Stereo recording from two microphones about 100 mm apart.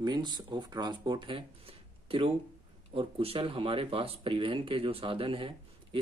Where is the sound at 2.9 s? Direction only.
70° right (ahead or behind).